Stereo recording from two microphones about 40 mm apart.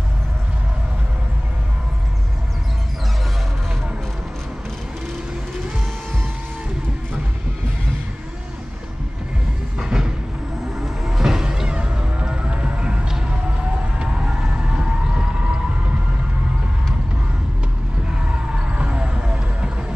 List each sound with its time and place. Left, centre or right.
9.8 s music: centre
11.1 s music: centre; by 13.0 s right
13.9 s siren: right
18.0 s a sound: right